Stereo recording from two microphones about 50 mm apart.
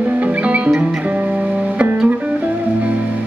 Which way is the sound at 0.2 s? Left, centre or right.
Right.